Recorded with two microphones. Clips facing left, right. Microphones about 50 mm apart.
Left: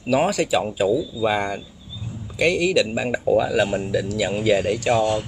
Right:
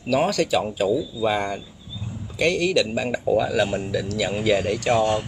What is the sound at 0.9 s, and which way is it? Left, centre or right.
Speech, centre.